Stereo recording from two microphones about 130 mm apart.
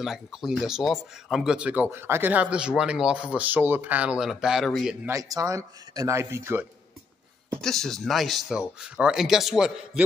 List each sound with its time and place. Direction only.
0.0 s speech: centre (ahead or behind)
5.0 s speech: 25° right (ahead or behind)
7.6 s speech: 5° left (ahead or behind)